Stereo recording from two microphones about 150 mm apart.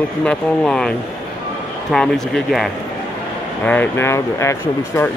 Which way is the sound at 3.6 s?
15° left (ahead or behind).